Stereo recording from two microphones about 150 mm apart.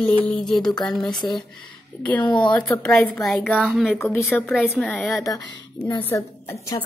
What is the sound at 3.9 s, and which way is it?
Speech, 10° left (ahead or behind).